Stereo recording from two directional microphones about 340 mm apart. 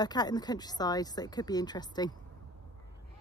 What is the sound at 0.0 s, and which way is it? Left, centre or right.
Speech, centre.